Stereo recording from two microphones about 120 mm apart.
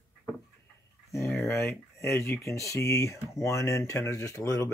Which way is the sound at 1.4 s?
25° left (ahead or behind).